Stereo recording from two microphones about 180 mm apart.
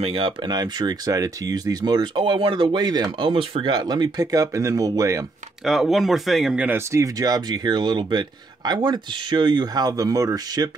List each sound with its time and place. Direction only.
0.0 s speech: 30° right (ahead or behind)
5.6 s speech: centre (ahead or behind); by 10.7 s 20° right (ahead or behind)